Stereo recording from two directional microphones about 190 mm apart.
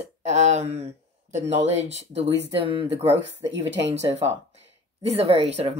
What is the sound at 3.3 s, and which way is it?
Speech, 70° right (ahead or behind).